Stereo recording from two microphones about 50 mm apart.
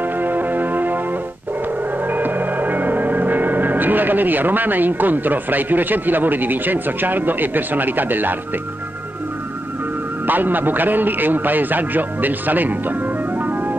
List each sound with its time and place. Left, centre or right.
0.0 s music: right
10.2 s a man's voice: right